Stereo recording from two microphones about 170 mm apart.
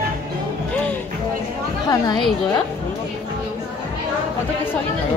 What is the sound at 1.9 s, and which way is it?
Speech, 25° left (ahead or behind).